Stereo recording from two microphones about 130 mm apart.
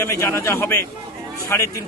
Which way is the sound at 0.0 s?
20° left (ahead or behind).